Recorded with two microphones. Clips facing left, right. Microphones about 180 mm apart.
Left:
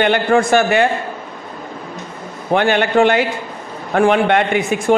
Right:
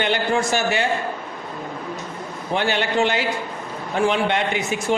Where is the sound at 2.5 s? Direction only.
55° left (ahead or behind).